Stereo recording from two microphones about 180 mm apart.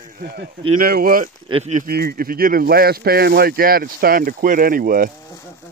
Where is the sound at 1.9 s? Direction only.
55° right (ahead or behind).